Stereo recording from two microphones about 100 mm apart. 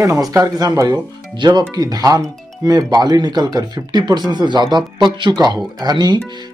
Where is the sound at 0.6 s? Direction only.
40° right (ahead or behind).